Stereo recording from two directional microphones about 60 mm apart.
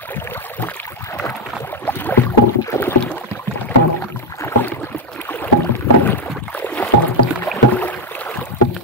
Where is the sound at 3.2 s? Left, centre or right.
Left.